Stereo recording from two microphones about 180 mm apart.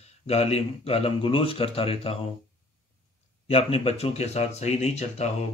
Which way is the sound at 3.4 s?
35° left (ahead or behind).